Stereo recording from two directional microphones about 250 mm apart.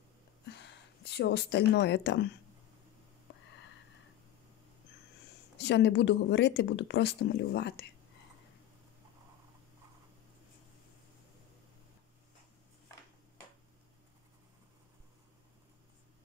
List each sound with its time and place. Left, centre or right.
0.5 s speech: left
5.6 s speech: left